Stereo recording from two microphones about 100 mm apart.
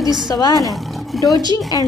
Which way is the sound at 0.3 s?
40° left (ahead or behind).